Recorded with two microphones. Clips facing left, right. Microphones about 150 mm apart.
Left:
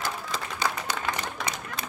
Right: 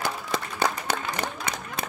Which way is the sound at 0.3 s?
50° right (ahead or behind).